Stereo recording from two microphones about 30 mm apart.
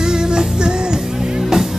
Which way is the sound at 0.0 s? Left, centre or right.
Right.